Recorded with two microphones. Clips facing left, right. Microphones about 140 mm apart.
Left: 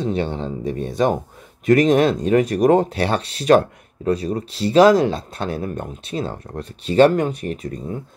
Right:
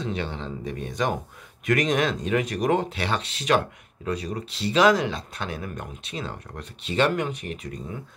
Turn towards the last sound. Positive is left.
turn(degrees=40)  # may be behind; listen again after turning